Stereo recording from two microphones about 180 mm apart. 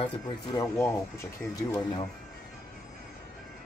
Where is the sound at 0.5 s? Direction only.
15° left (ahead or behind).